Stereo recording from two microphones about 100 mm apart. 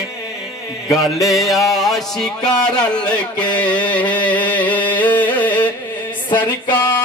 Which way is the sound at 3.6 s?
45° left (ahead or behind).